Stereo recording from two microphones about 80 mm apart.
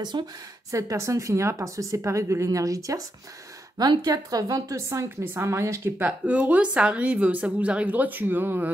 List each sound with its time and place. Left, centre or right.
0.1 s speech: right
0.7 s speech: right
4.0 s speech: right
5.9 s a woman's voice: centre